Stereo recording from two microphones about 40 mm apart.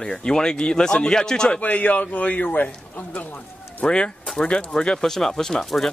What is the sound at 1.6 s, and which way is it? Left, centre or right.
Speech, left.